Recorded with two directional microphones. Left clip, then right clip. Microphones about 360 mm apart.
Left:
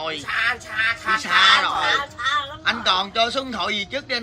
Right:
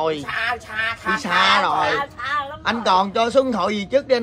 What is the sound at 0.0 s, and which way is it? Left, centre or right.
A man's voice, centre.